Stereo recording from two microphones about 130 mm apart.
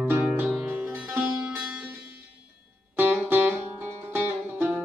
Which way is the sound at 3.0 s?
15° right (ahead or behind).